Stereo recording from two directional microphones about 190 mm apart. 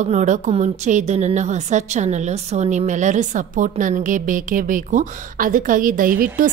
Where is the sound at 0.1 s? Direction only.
40° right (ahead or behind).